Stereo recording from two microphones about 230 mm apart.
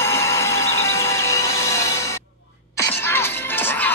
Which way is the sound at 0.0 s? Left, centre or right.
Centre.